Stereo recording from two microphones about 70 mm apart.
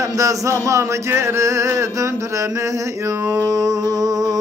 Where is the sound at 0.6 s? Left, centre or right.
Right.